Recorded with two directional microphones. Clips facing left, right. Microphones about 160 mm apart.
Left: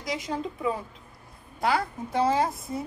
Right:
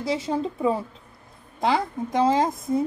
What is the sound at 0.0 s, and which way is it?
A woman's voice, 30° right (ahead or behind).